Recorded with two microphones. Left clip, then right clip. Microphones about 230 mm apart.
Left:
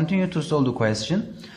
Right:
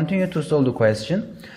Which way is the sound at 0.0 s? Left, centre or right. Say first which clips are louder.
Right 2 dB; centre.